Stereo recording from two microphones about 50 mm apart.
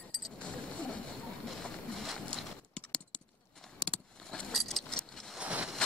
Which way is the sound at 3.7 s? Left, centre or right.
Centre.